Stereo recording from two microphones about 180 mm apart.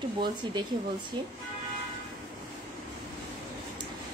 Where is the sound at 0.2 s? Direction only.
25° right (ahead or behind).